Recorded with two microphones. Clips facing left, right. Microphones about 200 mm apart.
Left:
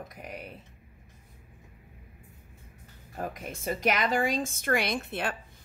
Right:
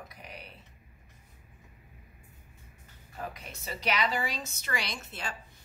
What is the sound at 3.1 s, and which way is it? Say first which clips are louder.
Speech: left 5 dB; 50° left (ahead or behind).